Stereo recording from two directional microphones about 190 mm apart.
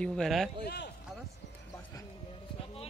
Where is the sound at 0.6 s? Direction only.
60° left (ahead or behind).